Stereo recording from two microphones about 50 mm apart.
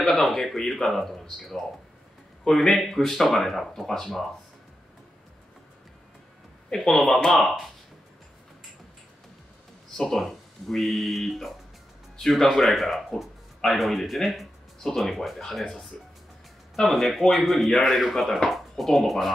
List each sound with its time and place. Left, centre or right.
0.0 s speech: centre
6.7 s speech: centre
9.9 s speech: centre
15.9 s speech: centre
16.7 s speech: centre